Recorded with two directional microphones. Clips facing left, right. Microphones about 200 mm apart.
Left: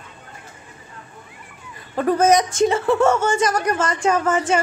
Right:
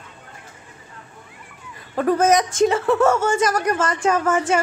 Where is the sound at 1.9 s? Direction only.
Centre (ahead or behind).